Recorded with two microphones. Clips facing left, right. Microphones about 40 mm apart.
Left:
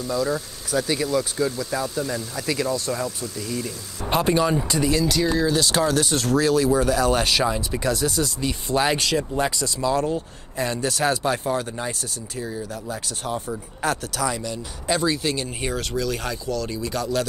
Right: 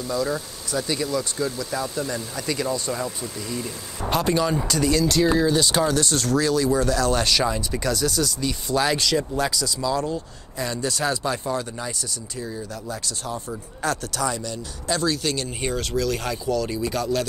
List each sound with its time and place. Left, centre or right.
0.0 s speech: centre
4.1 s speech: left
5.0 s speech: centre
5.9 s speech: centre
9.5 s speech: left
12.4 s speech: centre
14.0 s speech: centre
15.4 s speech: centre